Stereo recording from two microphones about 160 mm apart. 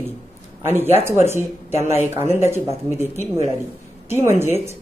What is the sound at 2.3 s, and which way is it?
Speech, 15° right (ahead or behind).